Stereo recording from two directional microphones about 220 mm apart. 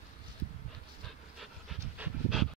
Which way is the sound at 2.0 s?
Centre (ahead or behind).